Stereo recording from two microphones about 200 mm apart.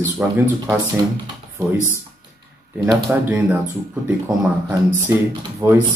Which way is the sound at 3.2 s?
10° right (ahead or behind).